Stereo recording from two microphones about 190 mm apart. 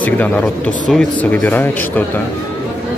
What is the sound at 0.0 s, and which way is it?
Speech, 10° left (ahead or behind).